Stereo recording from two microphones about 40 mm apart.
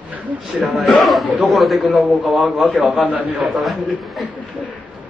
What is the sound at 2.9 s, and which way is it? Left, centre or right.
Speech, right.